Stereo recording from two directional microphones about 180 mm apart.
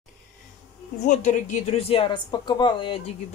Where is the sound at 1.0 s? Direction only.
45° left (ahead or behind); by 3.0 s 25° left (ahead or behind).